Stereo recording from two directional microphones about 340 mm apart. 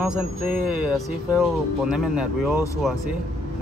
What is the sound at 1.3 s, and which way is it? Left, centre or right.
Speech, centre.